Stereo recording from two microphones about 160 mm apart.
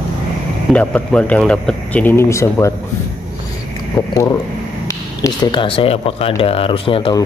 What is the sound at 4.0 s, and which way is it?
Speech, 25° left (ahead or behind).